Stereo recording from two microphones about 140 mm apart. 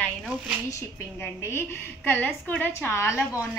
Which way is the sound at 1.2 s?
15° left (ahead or behind).